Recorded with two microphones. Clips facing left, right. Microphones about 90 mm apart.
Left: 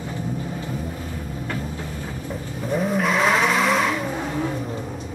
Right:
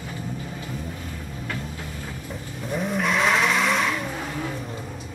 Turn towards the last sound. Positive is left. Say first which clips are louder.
# left 3 dB
turn(degrees=0)  # may be behind; listen again after turning